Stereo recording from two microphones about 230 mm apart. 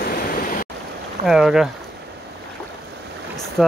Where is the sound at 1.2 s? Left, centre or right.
Centre.